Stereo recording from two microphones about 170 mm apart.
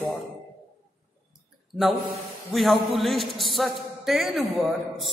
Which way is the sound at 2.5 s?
Centre (ahead or behind).